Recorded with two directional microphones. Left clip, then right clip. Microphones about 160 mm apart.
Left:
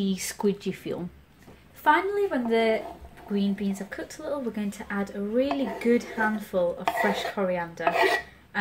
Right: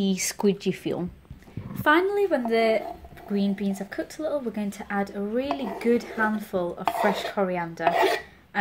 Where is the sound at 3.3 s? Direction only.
45° right (ahead or behind).